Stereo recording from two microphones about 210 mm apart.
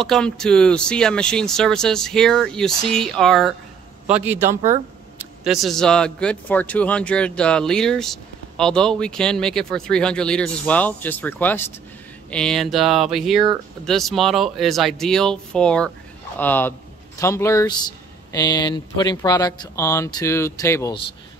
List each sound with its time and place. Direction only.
0.0 s a man's voice: 5° left (ahead or behind)
4.6 s speech: 30° right (ahead or behind)
5.4 s speech: centre (ahead or behind)